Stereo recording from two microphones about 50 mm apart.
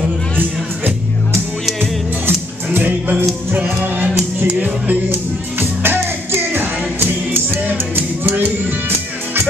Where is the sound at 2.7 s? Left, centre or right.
Right.